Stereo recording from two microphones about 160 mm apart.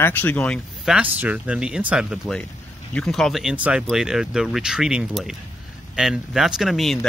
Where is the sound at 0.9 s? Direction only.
10° right (ahead or behind).